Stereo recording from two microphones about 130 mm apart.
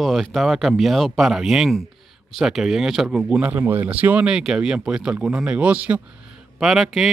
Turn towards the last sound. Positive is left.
turn(degrees=0)  # may be behind; listen again after turning